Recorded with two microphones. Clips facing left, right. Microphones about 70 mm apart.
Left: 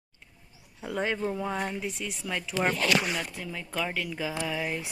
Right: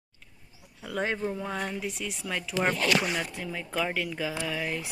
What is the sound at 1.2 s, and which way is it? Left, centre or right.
Speech, centre.